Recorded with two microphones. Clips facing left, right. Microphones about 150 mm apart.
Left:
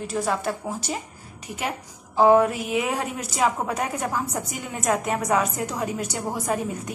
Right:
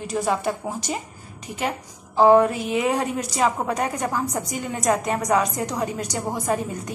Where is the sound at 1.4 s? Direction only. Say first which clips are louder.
Right 3 dB; 10° left (ahead or behind).